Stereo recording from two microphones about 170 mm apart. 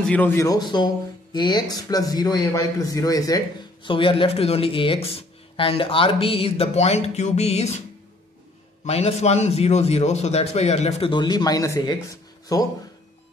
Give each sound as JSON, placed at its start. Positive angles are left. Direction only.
{"t": 0.0, "sound": "a man's voice", "side_deg": 10}
{"t": 0.5, "sound": "a man's voice", "side_deg": 25}
{"t": 8.8, "sound": "a man's voice", "side_deg": 40}